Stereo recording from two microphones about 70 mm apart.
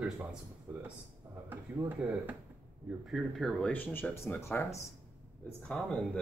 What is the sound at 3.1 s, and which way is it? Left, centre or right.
Speech, centre.